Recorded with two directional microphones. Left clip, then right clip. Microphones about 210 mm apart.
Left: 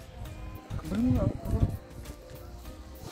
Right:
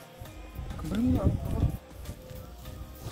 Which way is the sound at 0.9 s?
10° left (ahead or behind).